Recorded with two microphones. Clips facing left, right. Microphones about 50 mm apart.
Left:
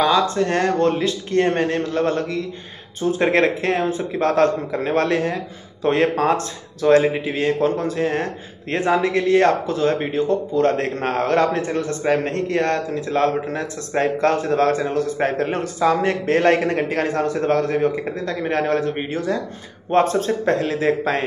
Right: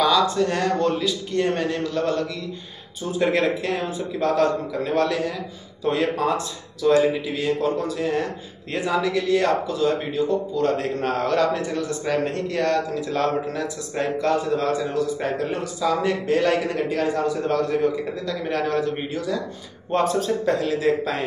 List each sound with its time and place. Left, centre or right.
0.0 s a man's voice: left
7.0 s a man's voice: left
12.0 s speech: left
14.2 s a man's voice: left